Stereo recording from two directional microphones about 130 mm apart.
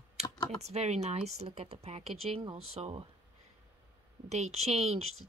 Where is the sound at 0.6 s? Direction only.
55° right (ahead or behind).